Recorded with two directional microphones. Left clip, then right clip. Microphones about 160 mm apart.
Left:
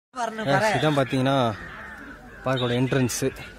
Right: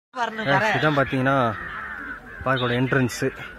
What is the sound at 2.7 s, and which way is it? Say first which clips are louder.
Speech: right 2 dB; 10° left (ahead or behind).